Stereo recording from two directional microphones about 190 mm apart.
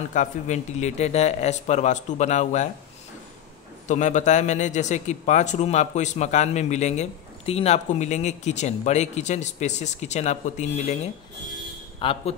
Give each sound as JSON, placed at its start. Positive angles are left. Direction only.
{"t": 0.1, "sound": "a man's voice", "side_deg": 40}
{"t": 3.8, "sound": "a man's voice", "side_deg": 40}